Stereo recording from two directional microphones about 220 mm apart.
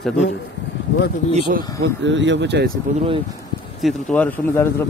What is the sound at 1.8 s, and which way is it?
Speech, 55° right (ahead or behind).